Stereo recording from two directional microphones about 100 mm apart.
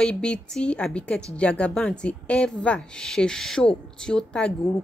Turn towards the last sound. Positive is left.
turn(degrees=10)  # may be behind; listen again after turning